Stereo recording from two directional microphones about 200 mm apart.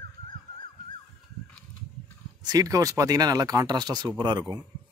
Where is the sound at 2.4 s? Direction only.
20° right (ahead or behind).